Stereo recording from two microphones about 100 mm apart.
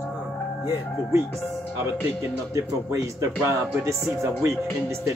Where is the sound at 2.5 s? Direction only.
30° right (ahead or behind).